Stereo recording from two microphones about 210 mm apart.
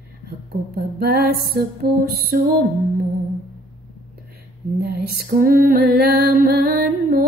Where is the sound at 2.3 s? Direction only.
45° right (ahead or behind).